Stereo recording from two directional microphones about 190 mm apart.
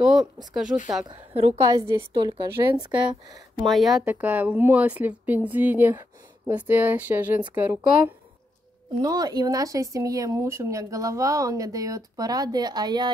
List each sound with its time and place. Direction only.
0.0 s speech: 5° right (ahead or behind)
1.0 s a woman's voice: 30° right (ahead or behind)
1.6 s a woman's voice: 15° right (ahead or behind)
3.6 s a woman's voice: centre (ahead or behind); by 13.1 s 20° right (ahead or behind)